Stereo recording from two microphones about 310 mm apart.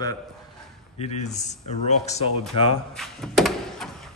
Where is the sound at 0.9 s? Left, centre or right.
Left.